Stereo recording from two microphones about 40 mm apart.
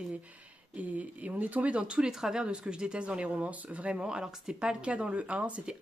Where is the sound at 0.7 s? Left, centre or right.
Right.